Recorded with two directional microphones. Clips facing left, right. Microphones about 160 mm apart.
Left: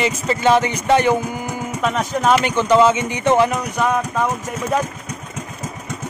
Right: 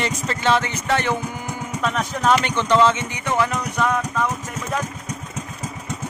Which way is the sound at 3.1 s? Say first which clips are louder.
Left 7 dB; 20° left (ahead or behind).